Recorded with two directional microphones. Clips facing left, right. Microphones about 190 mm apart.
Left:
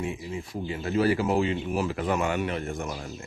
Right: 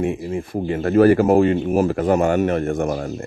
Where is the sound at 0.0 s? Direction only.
55° right (ahead or behind).